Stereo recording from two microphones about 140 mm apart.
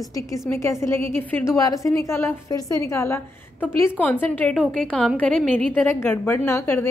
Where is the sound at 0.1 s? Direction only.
20° left (ahead or behind).